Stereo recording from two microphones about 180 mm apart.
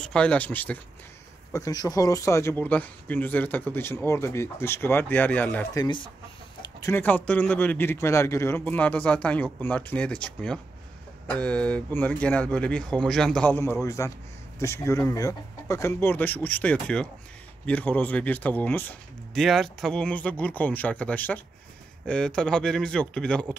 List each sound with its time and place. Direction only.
0.0 s a man's voice: 5° left (ahead or behind)
1.5 s a man's voice: 20° left (ahead or behind)
5.8 s a man's voice: 25° left (ahead or behind); by 23.4 s 5° left (ahead or behind)